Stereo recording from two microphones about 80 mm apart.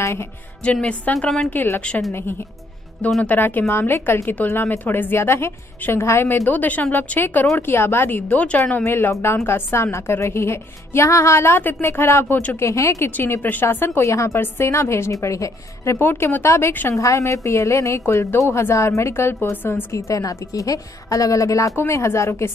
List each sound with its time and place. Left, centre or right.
0.0 s speech: left
0.7 s a woman's voice: centre
3.3 s a woman's voice: left
8.3 s a woman's voice: centre
8.8 s a woman's voice: left
13.4 s a woman's voice: left
17.0 s a woman's voice: left
20.0 s a woman's voice: left